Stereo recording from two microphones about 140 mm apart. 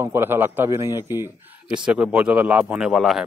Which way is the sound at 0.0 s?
15° right (ahead or behind).